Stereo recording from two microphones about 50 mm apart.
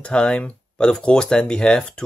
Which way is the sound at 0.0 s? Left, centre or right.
Left.